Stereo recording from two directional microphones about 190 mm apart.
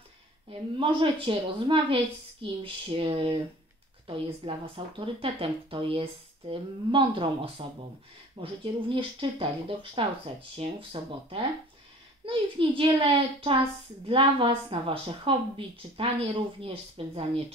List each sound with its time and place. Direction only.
0.5 s a child's voice: 25° right (ahead or behind)